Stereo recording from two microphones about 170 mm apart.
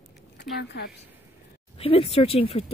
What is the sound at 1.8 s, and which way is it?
Speech, 35° left (ahead or behind).